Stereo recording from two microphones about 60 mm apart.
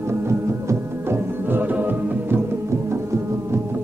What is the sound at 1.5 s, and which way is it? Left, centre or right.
Music, right.